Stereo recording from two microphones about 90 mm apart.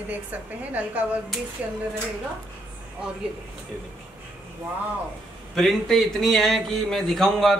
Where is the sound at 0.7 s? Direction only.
15° right (ahead or behind).